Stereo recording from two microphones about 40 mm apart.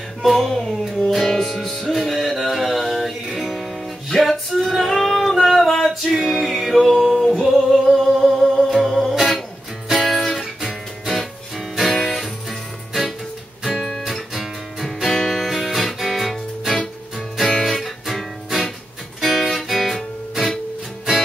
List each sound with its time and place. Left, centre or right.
0.4 s music: centre
4.6 s female singing: centre
8.5 s music: centre
19.5 s guitar: centre